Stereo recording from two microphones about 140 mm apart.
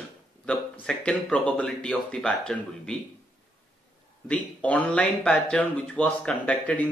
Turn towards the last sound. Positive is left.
turn(degrees=10)  # may be behind; listen again after turning